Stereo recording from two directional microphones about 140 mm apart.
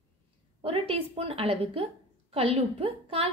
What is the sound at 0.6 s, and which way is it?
Speech, 45° right (ahead or behind).